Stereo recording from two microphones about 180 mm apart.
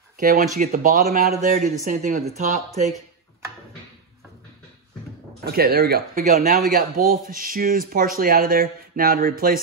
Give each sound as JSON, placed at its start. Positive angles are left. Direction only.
{"t": 0.2, "sound": "speech", "side_deg": -50}
{"t": 5.4, "sound": "speech", "side_deg": -60}
{"t": 6.3, "sound": "speech", "side_deg": -45}